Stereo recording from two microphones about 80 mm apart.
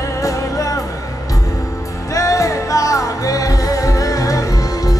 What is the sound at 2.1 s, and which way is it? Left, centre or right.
Music, left.